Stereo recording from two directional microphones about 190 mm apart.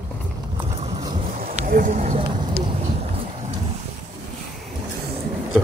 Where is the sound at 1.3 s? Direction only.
45° right (ahead or behind).